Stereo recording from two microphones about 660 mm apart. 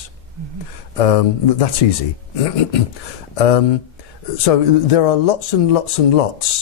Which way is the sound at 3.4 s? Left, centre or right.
Left.